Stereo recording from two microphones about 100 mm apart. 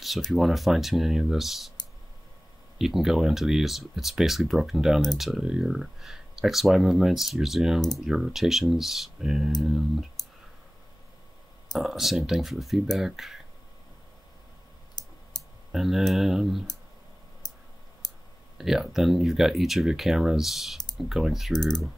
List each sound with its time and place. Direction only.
0.0 s speech: centre (ahead or behind)
2.8 s speech: 5° right (ahead or behind)
11.7 s speech: centre (ahead or behind)
15.0 s clicking: 45° left (ahead or behind)
15.7 s speech: centre (ahead or behind)
17.4 s clicking: 45° left (ahead or behind)
18.6 s speech: 5° right (ahead or behind)